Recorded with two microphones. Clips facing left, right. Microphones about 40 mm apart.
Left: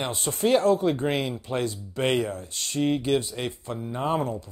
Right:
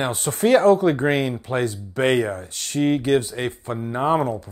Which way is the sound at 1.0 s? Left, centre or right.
Right.